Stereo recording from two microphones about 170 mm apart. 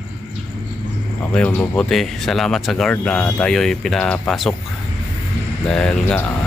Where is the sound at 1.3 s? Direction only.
10° left (ahead or behind).